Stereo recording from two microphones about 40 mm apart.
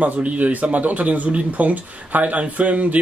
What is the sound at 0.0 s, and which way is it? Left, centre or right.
Speech, right.